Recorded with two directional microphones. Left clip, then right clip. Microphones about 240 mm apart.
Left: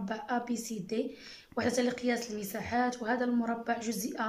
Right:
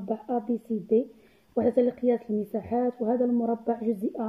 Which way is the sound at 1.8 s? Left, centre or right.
Centre.